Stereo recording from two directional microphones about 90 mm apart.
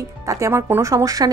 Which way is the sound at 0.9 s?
40° right (ahead or behind).